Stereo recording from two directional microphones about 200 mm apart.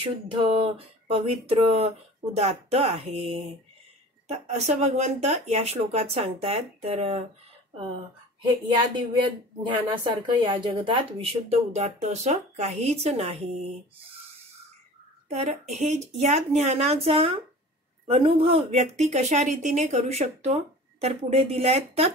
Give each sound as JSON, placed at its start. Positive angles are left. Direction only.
{"t": 0.3, "sound": "speech", "side_deg": -30}
{"t": 15.2, "sound": "speech", "side_deg": -35}